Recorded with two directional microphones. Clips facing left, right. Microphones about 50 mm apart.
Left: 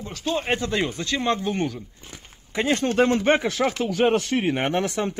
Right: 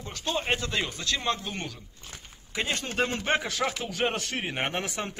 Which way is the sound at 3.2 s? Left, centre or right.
Left.